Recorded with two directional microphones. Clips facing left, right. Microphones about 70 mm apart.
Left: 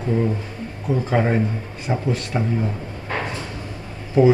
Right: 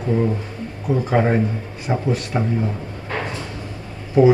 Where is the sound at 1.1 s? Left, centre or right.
Centre.